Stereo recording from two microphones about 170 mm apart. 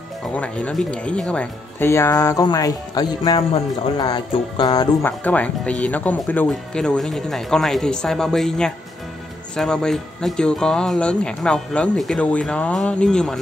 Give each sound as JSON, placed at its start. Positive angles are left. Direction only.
{"t": 0.3, "sound": "speech", "side_deg": 10}
{"t": 5.0, "sound": "speech", "side_deg": 10}